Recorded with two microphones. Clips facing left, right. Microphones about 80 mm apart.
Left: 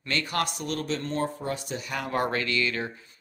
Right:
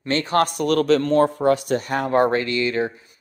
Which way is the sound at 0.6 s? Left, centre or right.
Right.